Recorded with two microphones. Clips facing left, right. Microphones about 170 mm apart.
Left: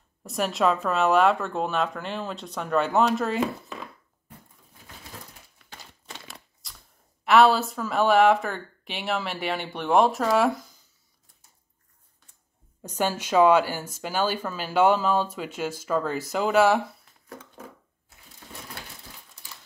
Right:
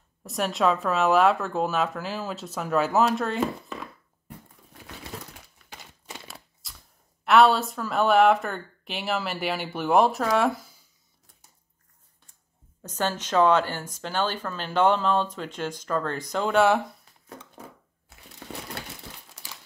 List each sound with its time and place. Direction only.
0.2 s speech: centre (ahead or behind)
6.1 s a sound: 5° right (ahead or behind)
7.2 s speech: centre (ahead or behind)
12.8 s speech: 10° left (ahead or behind)
19.4 s crumpling: 90° right